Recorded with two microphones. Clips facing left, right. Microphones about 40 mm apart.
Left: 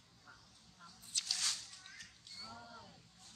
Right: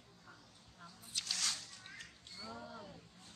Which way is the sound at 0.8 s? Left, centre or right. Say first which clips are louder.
Even; centre.